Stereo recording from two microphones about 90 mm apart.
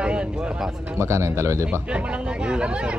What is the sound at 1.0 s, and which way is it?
Speech, 30° right (ahead or behind).